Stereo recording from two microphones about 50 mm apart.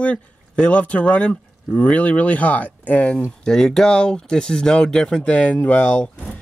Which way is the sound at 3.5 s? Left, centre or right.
Centre.